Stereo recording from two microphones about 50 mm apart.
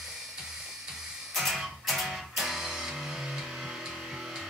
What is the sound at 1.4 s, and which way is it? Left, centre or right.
Music, centre.